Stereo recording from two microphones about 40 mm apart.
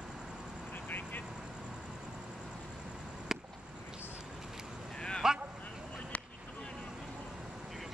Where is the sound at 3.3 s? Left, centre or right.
Centre.